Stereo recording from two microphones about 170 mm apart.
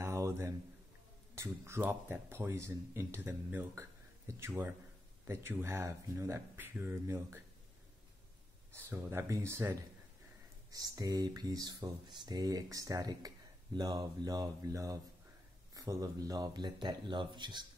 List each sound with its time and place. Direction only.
0.0 s a sound: 15° right (ahead or behind)
1.3 s speech: 15° right (ahead or behind)
8.7 s speech: 10° right (ahead or behind)